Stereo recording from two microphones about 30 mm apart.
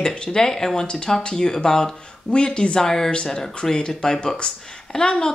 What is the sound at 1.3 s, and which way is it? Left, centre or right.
Speech, centre.